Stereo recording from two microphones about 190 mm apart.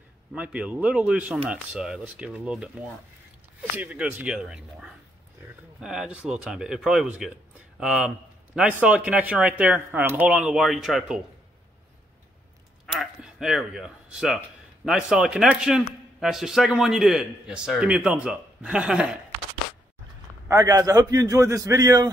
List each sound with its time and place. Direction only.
0.3 s a man's voice: 5° right (ahead or behind)
12.8 s a sound: centre (ahead or behind)
14.9 s a man's voice: 5° right (ahead or behind)
20.4 s speech: 15° right (ahead or behind)